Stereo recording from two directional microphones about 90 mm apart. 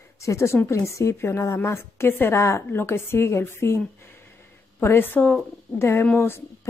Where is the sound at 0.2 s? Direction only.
35° left (ahead or behind).